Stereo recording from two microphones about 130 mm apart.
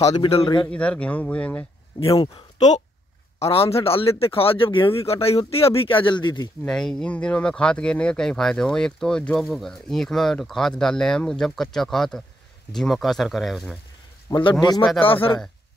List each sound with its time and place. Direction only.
0.1 s a man's voice: 35° left (ahead or behind)
0.7 s speech: 10° left (ahead or behind)
3.3 s speech: 50° left (ahead or behind)
6.6 s speech: 5° left (ahead or behind)
14.3 s a man's voice: 35° left (ahead or behind)